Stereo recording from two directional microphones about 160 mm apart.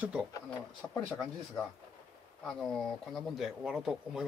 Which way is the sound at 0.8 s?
10° left (ahead or behind).